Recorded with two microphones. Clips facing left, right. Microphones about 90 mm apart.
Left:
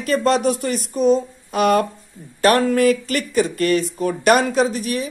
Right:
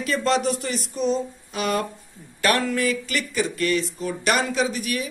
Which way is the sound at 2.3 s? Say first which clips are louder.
Left 7 dB; 40° left (ahead or behind).